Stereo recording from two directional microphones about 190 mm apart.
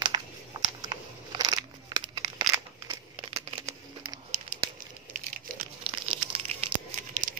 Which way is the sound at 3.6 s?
30° right (ahead or behind).